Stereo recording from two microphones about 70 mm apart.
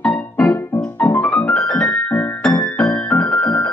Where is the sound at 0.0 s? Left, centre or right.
Centre.